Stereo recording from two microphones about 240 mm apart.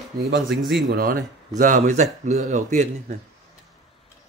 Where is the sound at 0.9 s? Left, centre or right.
Right.